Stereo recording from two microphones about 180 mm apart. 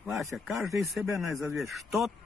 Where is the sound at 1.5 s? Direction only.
Centre (ahead or behind).